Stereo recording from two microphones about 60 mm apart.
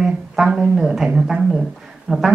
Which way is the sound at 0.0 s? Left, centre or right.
Centre.